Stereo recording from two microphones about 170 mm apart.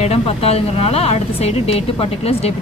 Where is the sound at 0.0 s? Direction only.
35° left (ahead or behind).